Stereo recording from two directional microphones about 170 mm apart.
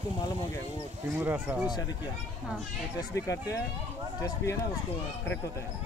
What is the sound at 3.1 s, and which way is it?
Speech, 20° left (ahead or behind).